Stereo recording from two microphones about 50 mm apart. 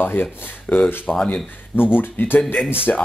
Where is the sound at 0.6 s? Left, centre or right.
Left.